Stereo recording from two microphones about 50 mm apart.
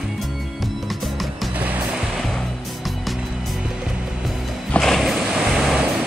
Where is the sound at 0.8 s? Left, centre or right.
Centre.